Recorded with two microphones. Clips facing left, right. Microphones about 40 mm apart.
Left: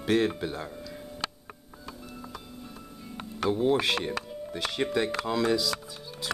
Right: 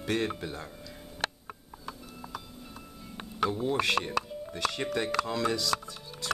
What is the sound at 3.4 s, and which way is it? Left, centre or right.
Speech, left.